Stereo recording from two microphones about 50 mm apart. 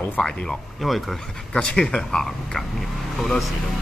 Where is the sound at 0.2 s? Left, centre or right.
Centre.